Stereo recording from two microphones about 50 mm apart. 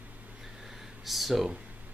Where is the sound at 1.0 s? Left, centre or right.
Centre.